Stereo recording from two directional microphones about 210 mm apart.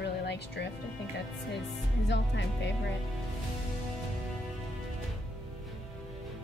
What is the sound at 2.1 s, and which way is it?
Speech, 55° left (ahead or behind).